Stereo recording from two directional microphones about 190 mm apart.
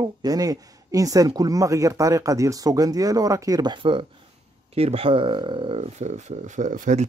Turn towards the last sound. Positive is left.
turn(degrees=-40)  # may be behind; listen again after turning